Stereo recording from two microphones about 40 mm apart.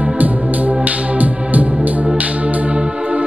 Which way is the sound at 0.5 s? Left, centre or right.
Right.